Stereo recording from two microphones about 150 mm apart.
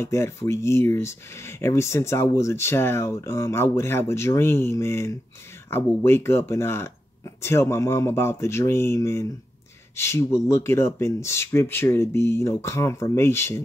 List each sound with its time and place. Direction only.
0.0 s speech: 20° left (ahead or behind)